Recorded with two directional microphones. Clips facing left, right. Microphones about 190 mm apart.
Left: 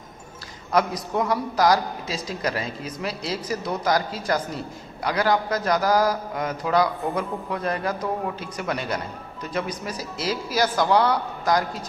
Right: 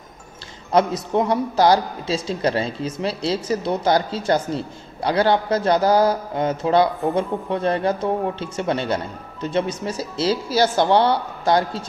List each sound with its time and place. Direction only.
0.7 s a man's voice: 25° right (ahead or behind)